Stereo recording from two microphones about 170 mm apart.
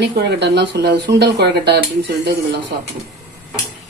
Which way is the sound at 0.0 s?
80° right.